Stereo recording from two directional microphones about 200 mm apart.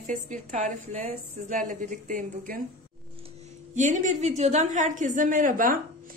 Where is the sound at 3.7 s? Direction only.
40° right (ahead or behind).